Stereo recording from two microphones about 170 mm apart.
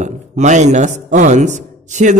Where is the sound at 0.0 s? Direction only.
45° right (ahead or behind).